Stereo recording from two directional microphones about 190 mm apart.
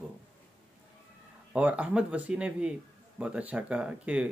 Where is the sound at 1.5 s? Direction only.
5° right (ahead or behind).